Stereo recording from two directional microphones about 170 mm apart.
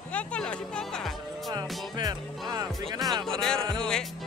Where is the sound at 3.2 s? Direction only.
5° left (ahead or behind).